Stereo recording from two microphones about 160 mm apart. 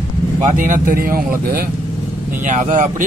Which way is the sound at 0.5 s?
55° right (ahead or behind).